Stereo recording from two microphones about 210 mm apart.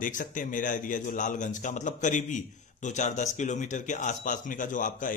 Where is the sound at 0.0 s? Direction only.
40° left (ahead or behind).